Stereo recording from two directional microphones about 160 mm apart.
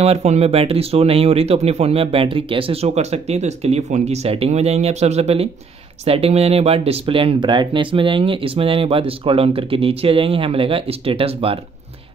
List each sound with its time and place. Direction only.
0.0 s speech: 40° right (ahead or behind)